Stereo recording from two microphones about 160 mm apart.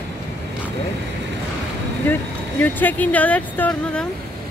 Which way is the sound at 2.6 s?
10° left (ahead or behind).